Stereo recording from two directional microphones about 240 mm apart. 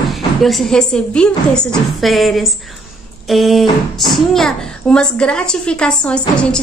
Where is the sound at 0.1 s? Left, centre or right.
Centre.